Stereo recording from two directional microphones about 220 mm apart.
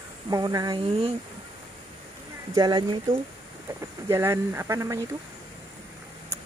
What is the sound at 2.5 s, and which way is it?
Speech, 20° right (ahead or behind).